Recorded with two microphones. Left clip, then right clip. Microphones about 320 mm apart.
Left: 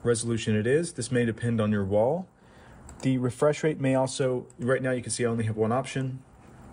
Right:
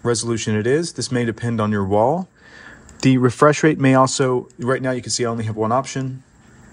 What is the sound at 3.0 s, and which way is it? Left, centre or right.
Speech, right.